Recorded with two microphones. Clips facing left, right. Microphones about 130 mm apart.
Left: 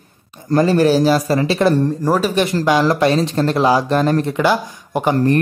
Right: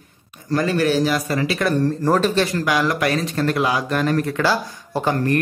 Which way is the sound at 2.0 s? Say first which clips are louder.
Left 1 dB; 10° left (ahead or behind).